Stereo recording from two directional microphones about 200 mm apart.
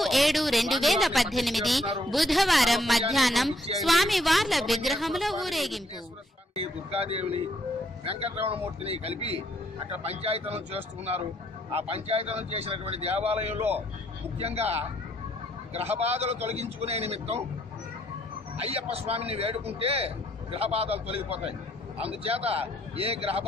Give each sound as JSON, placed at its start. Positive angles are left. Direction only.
{"t": 0.0, "sound": "a woman's voice", "side_deg": 0}
{"t": 6.5, "sound": "a man's voice", "side_deg": -30}
{"t": 18.6, "sound": "a man's voice", "side_deg": -30}